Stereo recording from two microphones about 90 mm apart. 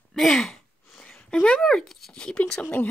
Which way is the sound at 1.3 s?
10° left (ahead or behind).